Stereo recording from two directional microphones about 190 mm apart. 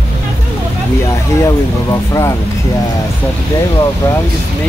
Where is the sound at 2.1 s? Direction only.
15° left (ahead or behind).